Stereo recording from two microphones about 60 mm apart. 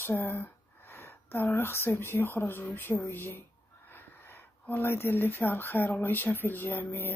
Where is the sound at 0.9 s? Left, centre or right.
Left.